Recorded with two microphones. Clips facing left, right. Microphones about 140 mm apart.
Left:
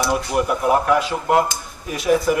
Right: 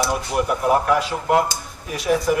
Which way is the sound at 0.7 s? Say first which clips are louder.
Left 1 dB; centre (ahead or behind).